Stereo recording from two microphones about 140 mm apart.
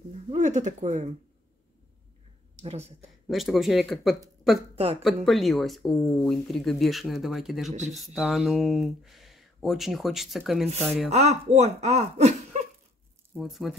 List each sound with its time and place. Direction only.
0.3 s speech: 60° right (ahead or behind)
2.6 s speech: 50° right (ahead or behind)
3.3 s speech: centre (ahead or behind)
11.1 s speech: 50° right (ahead or behind)
13.4 s speech: centre (ahead or behind)